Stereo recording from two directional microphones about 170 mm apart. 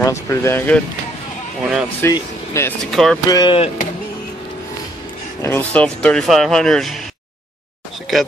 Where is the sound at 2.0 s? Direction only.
15° left (ahead or behind).